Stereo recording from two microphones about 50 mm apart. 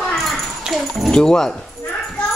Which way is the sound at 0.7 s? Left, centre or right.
Centre.